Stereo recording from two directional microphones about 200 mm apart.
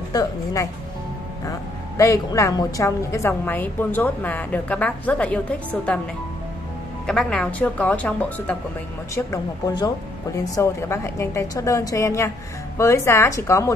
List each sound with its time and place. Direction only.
0.1 s a woman's voice: 20° left (ahead or behind)
2.0 s a woman's voice: 15° left (ahead or behind)
7.1 s a woman's voice: 5° left (ahead or behind)
9.1 s a woman's voice: 20° left (ahead or behind)